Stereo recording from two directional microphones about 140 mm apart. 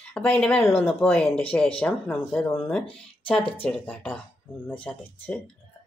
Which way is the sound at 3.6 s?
5° left (ahead or behind).